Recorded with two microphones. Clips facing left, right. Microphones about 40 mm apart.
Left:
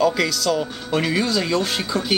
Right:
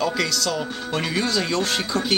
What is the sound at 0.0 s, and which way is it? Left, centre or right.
Speech, centre.